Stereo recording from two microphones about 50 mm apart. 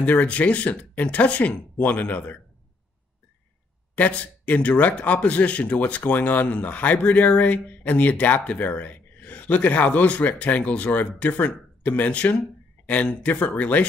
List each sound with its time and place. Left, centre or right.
0.0 s a man's voice: left
3.9 s a man's voice: left